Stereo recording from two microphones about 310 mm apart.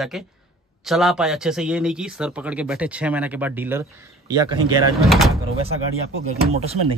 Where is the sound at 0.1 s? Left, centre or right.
Centre.